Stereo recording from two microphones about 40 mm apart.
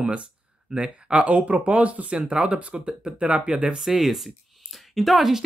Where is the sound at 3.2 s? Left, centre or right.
Right.